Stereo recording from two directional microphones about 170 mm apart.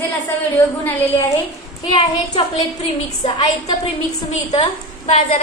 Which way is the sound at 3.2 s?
25° left (ahead or behind).